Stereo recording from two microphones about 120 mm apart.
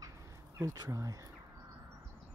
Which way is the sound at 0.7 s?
30° right (ahead or behind).